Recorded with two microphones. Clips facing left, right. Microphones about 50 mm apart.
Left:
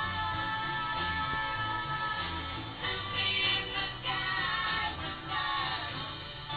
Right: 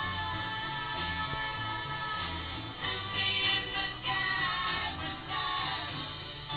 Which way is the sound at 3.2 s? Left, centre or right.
Centre.